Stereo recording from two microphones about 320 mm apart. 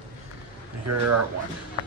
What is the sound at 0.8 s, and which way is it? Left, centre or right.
Speech, right.